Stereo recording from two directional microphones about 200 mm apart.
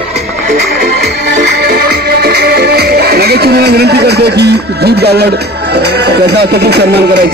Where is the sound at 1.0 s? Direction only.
55° right (ahead or behind).